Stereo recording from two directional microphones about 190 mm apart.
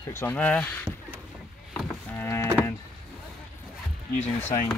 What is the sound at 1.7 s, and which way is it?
Rowboat, 10° left (ahead or behind).